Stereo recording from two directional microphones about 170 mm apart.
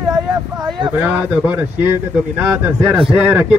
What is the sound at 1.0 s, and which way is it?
A man's voice, 5° right (ahead or behind).